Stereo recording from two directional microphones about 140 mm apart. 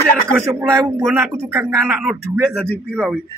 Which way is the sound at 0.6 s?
20° right (ahead or behind).